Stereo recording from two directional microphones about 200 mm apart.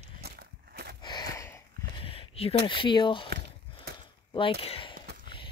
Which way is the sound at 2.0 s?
30° left (ahead or behind).